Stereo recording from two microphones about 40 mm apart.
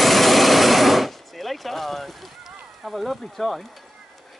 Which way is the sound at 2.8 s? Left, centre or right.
Centre.